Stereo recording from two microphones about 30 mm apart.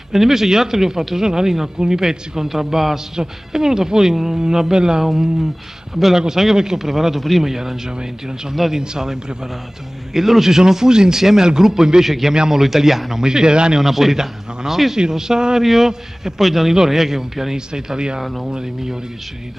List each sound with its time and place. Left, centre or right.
0.1 s speech: centre
5.0 s a man's voice: centre
7.4 s speech: centre
8.0 s a man's voice: right
10.1 s speech: centre
13.2 s a man's voice: right
13.7 s a man's voice: centre
15.6 s a man's voice: centre; by 18.2 s right
18.2 s a man's voice: centre
18.5 s speech: centre